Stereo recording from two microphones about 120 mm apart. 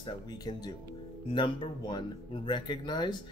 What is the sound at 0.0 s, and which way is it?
Speech, 35° left (ahead or behind).